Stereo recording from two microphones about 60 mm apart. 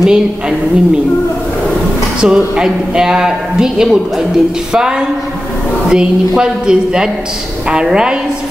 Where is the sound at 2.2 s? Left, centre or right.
Centre.